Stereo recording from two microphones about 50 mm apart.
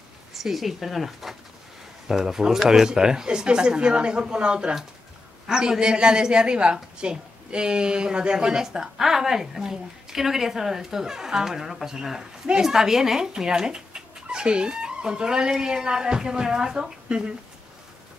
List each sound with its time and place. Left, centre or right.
0.3 s a woman's voice: centre